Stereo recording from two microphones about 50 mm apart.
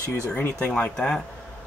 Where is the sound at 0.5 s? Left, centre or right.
Left.